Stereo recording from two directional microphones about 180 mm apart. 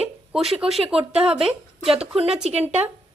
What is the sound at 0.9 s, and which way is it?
Speech, 35° right (ahead or behind).